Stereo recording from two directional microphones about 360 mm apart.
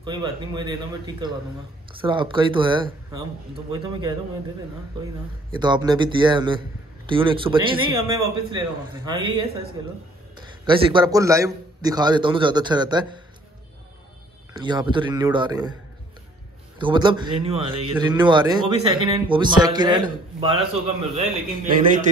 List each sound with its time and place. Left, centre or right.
0.0 s speech: centre
5.6 s speech: centre
14.6 s speech: centre
16.7 s a man's voice: centre